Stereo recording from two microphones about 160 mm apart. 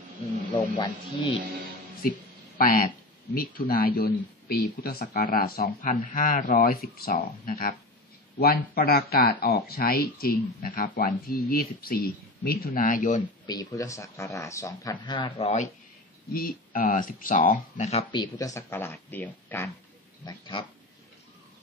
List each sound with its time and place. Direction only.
0.7 s speech: 30° left (ahead or behind)
2.0 s speech: 65° left (ahead or behind)
13.5 s speech: 20° left (ahead or behind); by 15.6 s 40° left (ahead or behind)
16.3 s speech: 65° left (ahead or behind); by 18.0 s 45° left (ahead or behind)
18.1 s speech: 25° left (ahead or behind); by 19.7 s 10° left (ahead or behind)
20.2 s speech: 30° left (ahead or behind)